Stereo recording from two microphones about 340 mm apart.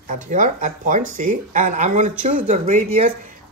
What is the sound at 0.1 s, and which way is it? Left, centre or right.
Speech, right.